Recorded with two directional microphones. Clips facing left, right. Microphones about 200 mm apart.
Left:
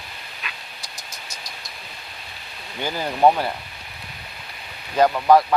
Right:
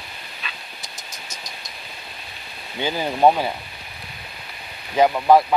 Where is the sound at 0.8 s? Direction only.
20° right (ahead or behind).